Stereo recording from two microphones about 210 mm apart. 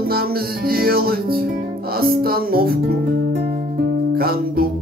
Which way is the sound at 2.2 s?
45° right (ahead or behind).